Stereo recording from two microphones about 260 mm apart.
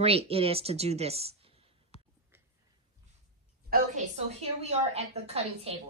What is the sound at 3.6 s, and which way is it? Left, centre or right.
A woman's voice, right.